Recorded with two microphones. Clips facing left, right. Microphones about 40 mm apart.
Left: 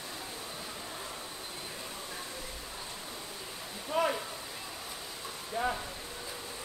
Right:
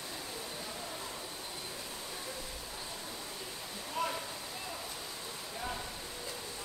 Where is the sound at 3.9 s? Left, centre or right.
Left.